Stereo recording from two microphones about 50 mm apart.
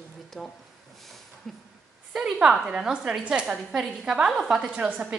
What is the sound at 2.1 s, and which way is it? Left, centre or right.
Speech, centre.